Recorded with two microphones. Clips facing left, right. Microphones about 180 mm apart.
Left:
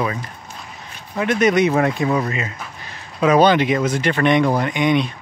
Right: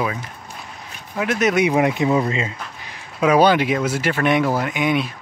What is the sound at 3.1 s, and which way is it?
Speech, 10° right (ahead or behind).